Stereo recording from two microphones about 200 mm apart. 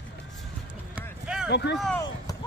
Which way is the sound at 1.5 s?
55° left (ahead or behind).